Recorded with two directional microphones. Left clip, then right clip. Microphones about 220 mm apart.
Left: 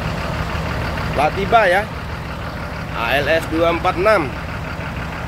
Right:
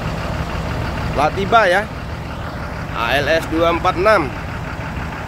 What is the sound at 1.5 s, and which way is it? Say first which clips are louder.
Speech: right 1 dB; 5° right (ahead or behind).